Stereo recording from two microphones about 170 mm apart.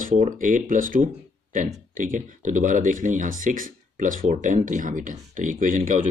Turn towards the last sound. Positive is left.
turn(degrees=-50)  # may be behind; listen again after turning